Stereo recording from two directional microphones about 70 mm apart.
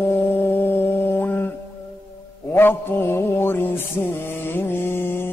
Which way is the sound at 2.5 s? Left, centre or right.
Left.